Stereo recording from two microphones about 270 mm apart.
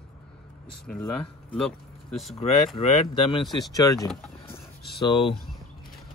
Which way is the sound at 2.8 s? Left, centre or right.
Centre.